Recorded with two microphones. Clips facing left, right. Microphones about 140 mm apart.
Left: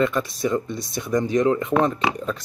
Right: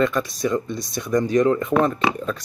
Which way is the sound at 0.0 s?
25° left (ahead or behind).